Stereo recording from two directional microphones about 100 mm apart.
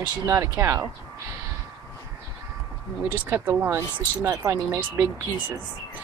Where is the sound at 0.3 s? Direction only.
30° right (ahead or behind).